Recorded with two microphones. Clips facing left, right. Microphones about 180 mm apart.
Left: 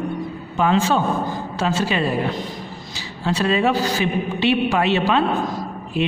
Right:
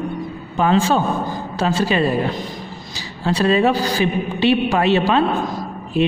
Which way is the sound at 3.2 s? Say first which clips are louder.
Right 3 dB; 35° right (ahead or behind).